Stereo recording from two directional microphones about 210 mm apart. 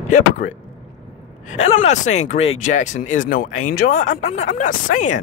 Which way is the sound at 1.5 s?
35° left (ahead or behind).